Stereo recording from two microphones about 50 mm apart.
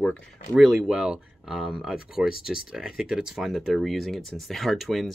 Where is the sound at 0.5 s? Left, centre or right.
Centre.